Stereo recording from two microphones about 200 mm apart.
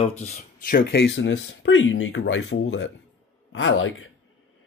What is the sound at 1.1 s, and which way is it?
Speech, 70° left (ahead or behind).